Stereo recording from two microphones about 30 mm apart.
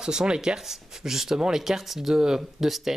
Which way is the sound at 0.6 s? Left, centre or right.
Centre.